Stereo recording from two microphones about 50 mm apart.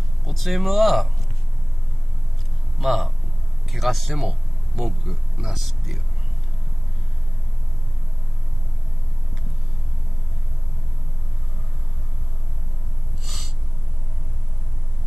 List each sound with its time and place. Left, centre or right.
0.2 s speech: centre
2.8 s speech: centre
13.2 s gasp: centre